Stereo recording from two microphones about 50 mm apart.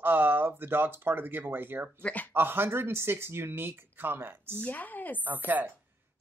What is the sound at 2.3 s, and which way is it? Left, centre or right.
Speech, right.